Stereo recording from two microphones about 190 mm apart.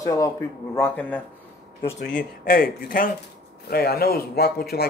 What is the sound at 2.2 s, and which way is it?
Speech, 50° left (ahead or behind).